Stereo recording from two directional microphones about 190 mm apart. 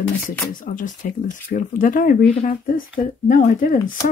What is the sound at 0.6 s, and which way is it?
A woman's voice, 40° left (ahead or behind).